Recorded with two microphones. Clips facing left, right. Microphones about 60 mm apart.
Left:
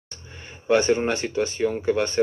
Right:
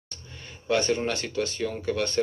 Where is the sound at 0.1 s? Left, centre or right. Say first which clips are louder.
Left 2 dB; left.